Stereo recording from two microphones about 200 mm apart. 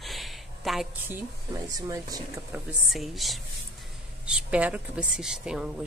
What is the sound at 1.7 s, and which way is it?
Speech, 15° right (ahead or behind).